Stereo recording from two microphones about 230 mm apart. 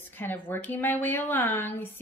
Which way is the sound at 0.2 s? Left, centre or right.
Centre.